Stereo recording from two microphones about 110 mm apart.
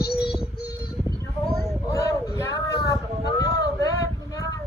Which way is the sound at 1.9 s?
30° left (ahead or behind).